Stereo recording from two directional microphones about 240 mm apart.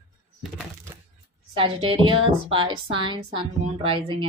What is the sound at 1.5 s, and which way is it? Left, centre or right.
A woman's voice, right.